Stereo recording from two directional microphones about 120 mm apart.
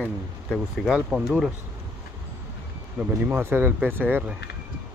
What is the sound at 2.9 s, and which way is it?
Speech, 15° right (ahead or behind).